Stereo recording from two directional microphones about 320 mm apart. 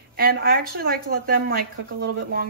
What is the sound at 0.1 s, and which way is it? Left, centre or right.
Speech, right.